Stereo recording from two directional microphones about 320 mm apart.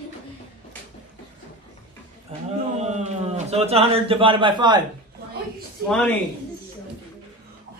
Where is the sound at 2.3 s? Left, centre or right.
Centre.